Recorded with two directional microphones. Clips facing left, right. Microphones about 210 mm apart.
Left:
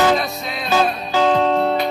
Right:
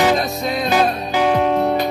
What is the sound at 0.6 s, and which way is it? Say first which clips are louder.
Music: even; 15° right (ahead or behind).